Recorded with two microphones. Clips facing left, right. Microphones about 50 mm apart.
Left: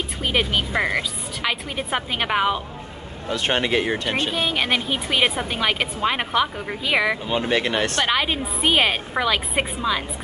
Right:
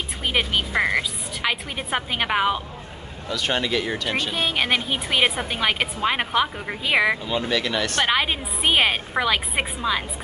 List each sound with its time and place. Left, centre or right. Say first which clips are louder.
0.2 s a woman's voice: left 1 dB; centre
3.3 s speech: left 2 dB; left
4.3 s a woman's voice: right 1 dB; centre
7.2 s speech: left 2 dB; left
8.0 s a woman's voice: even; centre